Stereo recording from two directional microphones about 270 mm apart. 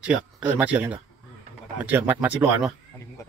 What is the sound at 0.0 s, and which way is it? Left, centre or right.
A man's voice, centre.